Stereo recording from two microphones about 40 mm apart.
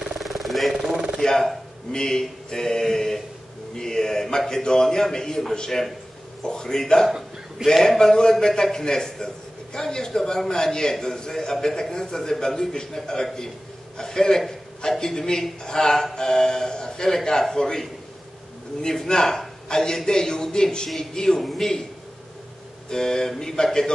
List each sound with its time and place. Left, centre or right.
0.2 s a sound: centre
1.2 s speech: centre
1.9 s a man's voice: centre
7.1 s a sound: centre
7.6 s a man's voice: centre
19.0 s a man's voice: centre
21.4 s a man's voice: centre
22.8 s a man's voice: centre